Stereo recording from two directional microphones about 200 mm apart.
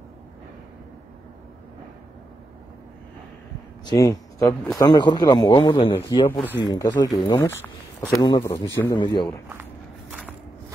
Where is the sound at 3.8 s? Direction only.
15° left (ahead or behind).